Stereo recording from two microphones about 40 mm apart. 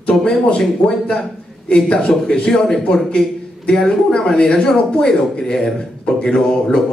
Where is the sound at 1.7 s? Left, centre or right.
Left.